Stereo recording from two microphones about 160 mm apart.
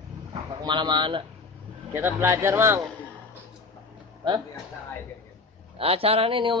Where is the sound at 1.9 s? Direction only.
15° right (ahead or behind).